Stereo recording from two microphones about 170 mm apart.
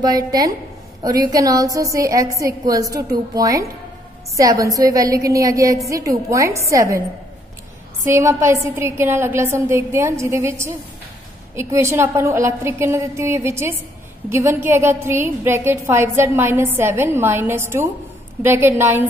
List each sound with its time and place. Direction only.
0.0 s a woman's voice: 20° right (ahead or behind)
8.1 s a woman's voice: 15° right (ahead or behind)